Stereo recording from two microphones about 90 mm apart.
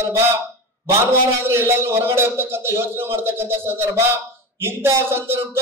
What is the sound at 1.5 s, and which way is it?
Speech, 30° right (ahead or behind).